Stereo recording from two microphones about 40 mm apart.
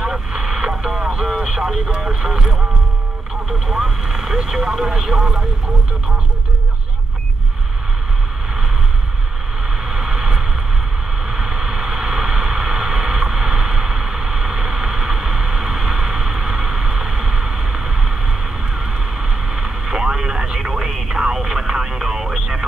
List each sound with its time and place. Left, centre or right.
0.0 s radio: centre
2.0 s speech: centre
9.8 s vehicle: centre
11.2 s a sound: centre
18.8 s vehicle: centre
21.1 s a sound: centre